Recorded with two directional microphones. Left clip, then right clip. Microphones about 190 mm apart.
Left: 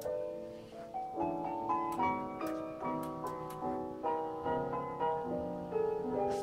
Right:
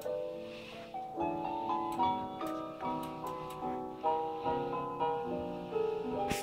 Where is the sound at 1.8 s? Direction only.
25° left (ahead or behind).